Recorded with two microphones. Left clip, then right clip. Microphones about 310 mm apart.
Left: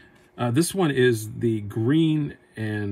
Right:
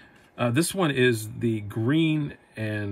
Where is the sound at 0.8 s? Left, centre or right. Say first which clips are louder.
Left 2 dB; centre.